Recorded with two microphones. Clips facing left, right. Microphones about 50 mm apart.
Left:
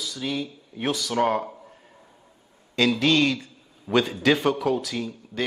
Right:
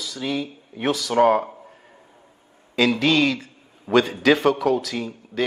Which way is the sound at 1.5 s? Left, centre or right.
Centre.